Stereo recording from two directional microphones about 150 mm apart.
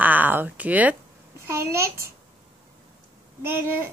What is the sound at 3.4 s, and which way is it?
Speech, 15° right (ahead or behind).